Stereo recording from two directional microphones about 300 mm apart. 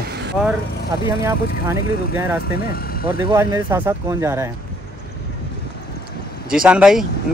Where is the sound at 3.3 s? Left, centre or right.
Centre.